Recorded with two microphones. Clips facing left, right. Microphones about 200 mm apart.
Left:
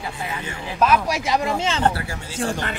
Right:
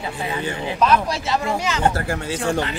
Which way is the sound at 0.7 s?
10° left (ahead or behind).